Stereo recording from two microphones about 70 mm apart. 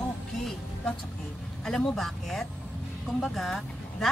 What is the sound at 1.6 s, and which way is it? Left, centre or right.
Speech, centre.